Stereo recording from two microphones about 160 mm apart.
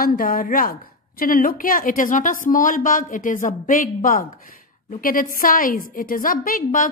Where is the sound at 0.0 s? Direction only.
65° left (ahead or behind).